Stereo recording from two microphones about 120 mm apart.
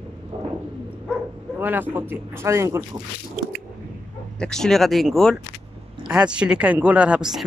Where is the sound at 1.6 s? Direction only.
15° right (ahead or behind).